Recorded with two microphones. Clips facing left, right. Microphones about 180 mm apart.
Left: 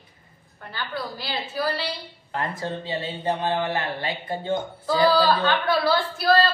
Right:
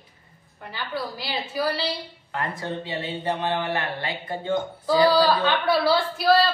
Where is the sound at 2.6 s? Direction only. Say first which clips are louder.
Left 1 dB; 25° left (ahead or behind).